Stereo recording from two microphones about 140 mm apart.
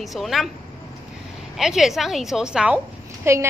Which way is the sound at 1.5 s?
5° right (ahead or behind).